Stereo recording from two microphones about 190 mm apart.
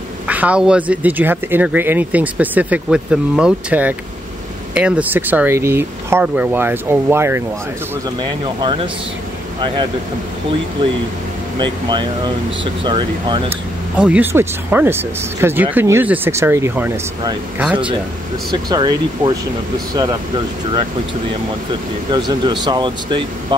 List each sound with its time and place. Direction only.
0.3 s speech: 5° right (ahead or behind)
8.2 s speech: 25° right (ahead or behind)
11.5 s speech: 25° right (ahead or behind)
13.5 s speech: 5° right (ahead or behind)
18.5 s speech: 20° right (ahead or behind)
22.4 s speech: 25° right (ahead or behind)